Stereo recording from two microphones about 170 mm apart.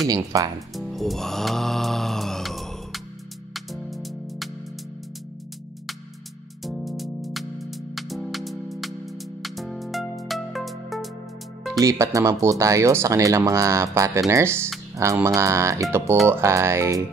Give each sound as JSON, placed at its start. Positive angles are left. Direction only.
{"t": 0.1, "sound": "speech", "side_deg": -20}
{"t": 0.7, "sound": "music", "side_deg": 0}
{"t": 6.6, "sound": "music", "side_deg": 0}
{"t": 11.8, "sound": "speech", "side_deg": -20}